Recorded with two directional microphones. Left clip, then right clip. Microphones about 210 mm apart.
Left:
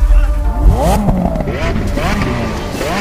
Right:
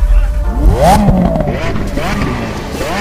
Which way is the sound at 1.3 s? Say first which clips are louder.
Right 2 dB; centre (ahead or behind).